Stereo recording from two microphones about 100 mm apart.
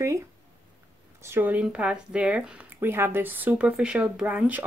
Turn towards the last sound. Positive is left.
turn(degrees=-15)  # may be behind; listen again after turning